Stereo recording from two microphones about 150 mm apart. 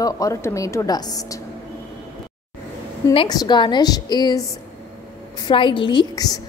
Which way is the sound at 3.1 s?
25° left (ahead or behind).